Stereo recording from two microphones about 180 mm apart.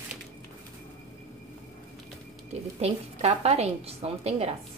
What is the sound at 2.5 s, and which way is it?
A woman's voice, 35° right (ahead or behind).